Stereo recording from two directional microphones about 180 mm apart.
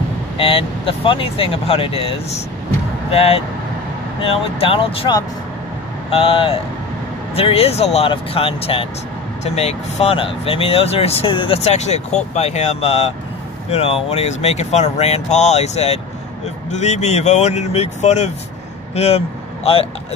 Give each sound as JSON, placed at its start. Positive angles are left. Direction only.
{"t": 0.4, "sound": "speech", "side_deg": 30}